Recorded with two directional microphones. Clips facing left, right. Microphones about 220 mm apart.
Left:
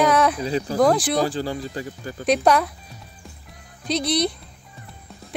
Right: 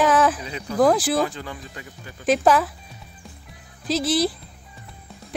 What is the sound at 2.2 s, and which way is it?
Speech, centre (ahead or behind).